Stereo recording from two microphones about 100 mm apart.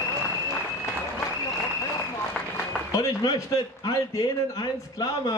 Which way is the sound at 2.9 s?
35° left (ahead or behind).